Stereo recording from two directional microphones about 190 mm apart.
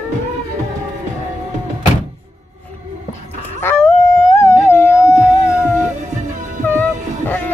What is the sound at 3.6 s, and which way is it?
Howl, 15° left (ahead or behind).